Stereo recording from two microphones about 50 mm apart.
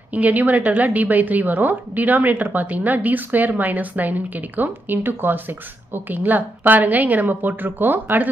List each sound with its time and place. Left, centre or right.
0.1 s a woman's voice: right